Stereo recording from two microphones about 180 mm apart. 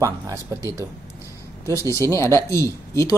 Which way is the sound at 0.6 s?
15° left (ahead or behind).